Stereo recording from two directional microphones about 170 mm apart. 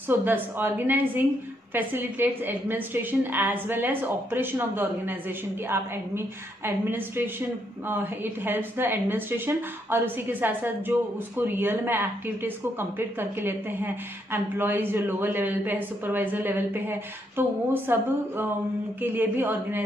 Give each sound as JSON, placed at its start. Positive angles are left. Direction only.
{"t": 0.1, "sound": "a woman's voice", "side_deg": -10}